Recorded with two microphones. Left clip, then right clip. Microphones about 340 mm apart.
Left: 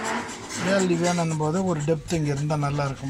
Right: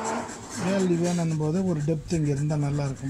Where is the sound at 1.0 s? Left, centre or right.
Left.